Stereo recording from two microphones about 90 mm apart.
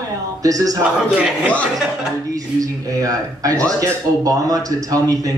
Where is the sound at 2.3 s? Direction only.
40° right (ahead or behind).